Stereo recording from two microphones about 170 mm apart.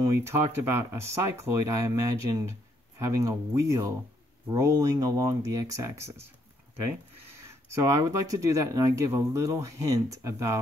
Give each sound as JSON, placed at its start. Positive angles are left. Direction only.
{"t": 0.0, "sound": "speech", "side_deg": -15}
{"t": 7.3, "sound": "speech", "side_deg": -15}